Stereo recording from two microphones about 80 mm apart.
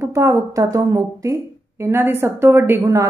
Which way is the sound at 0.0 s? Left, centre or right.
Right.